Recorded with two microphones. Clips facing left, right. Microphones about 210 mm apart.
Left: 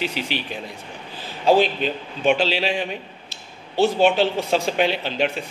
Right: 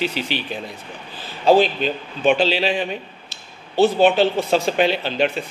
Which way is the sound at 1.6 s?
40° right (ahead or behind).